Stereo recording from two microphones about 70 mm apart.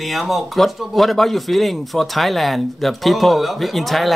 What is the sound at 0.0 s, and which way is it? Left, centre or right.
Speech, centre.